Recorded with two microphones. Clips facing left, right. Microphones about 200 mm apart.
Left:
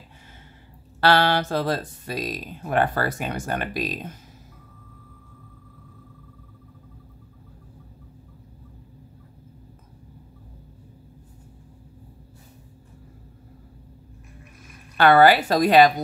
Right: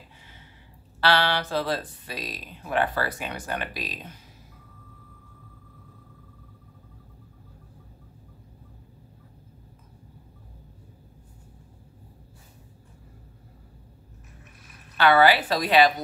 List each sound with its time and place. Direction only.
1.0 s speech: 45° left (ahead or behind)
15.0 s speech: 45° left (ahead or behind)